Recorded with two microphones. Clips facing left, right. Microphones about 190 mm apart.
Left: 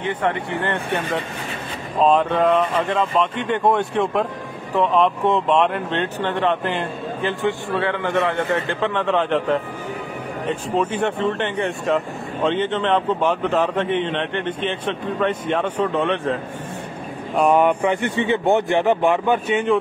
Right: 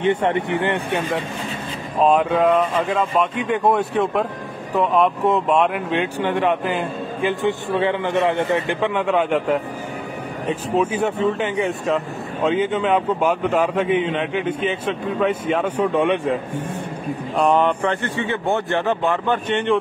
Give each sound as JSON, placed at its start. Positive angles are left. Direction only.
{"t": 0.0, "sound": "speech", "side_deg": -25}
{"t": 17.4, "sound": "speech", "side_deg": 10}